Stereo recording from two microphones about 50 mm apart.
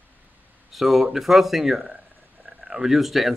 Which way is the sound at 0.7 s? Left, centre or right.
Centre.